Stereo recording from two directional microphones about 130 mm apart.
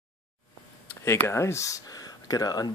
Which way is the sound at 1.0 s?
20° left (ahead or behind).